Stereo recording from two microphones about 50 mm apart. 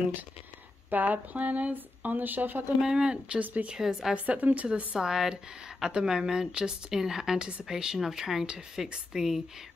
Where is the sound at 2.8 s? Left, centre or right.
Centre.